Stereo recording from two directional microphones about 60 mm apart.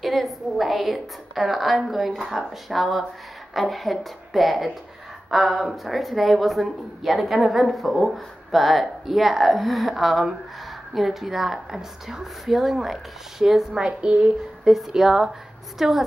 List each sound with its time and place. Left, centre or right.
0.0 s a woman's voice: centre